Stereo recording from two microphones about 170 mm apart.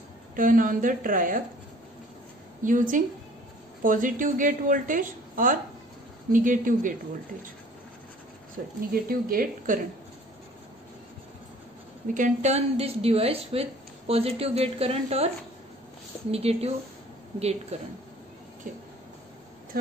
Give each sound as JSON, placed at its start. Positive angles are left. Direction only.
{"t": 0.4, "sound": "a woman's voice", "side_deg": -50}
{"t": 2.6, "sound": "a woman's voice", "side_deg": -50}
{"t": 8.9, "sound": "speech", "side_deg": -60}
{"t": 12.1, "sound": "a woman's voice", "side_deg": -45}